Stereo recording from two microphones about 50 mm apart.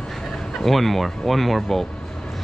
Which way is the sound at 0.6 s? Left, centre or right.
Centre.